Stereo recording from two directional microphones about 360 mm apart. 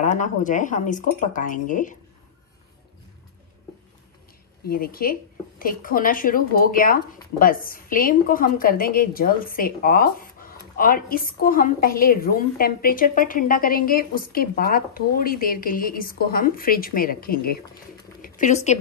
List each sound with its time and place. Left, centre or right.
0.0 s speech: left
4.6 s speech: left